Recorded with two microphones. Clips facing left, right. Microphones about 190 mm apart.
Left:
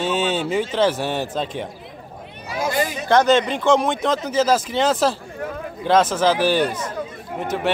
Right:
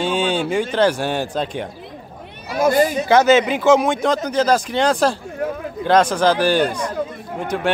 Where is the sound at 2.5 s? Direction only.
55° right (ahead or behind).